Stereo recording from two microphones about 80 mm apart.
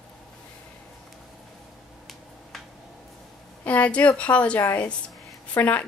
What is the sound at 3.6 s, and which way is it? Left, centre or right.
A woman's voice, centre.